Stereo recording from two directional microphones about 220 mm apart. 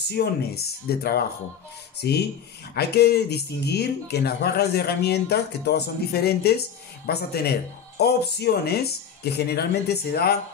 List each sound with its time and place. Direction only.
0.1 s speech: 45° left (ahead or behind)